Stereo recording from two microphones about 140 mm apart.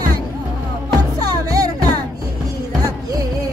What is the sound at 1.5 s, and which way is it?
Music, 25° right (ahead or behind).